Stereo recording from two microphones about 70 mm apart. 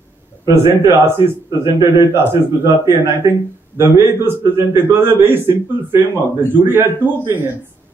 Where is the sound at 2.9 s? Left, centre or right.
Right.